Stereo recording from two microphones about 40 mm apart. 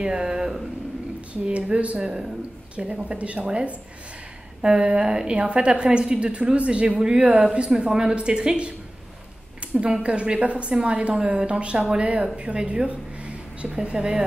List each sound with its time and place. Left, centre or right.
0.0 s speech: centre
1.3 s a woman's voice: right
9.8 s a woman's voice: right